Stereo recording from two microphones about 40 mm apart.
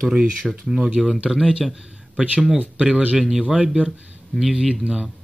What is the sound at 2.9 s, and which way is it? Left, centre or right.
Speech, right.